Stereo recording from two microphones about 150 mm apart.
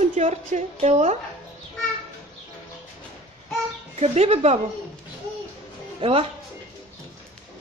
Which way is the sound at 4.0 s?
45° right (ahead or behind).